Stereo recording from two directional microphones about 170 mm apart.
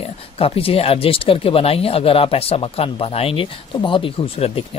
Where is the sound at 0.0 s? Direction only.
35° left (ahead or behind).